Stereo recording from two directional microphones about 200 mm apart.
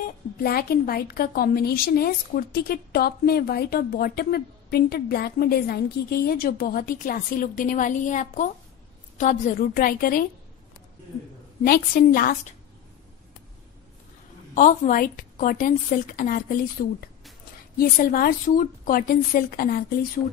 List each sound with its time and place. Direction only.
0.4 s a woman's voice: 50° left (ahead or behind)
11.6 s a woman's voice: 45° left (ahead or behind)
14.5 s a woman's voice: 40° left (ahead or behind)
17.7 s a woman's voice: 45° left (ahead or behind)